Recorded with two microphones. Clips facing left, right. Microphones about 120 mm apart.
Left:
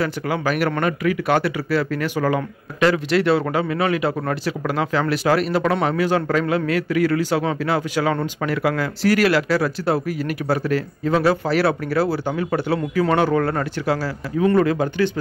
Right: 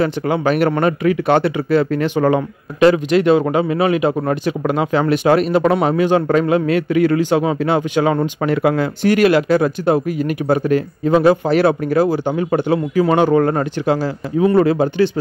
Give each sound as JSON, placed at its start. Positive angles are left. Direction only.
{"t": 0.0, "sound": "speech", "side_deg": -25}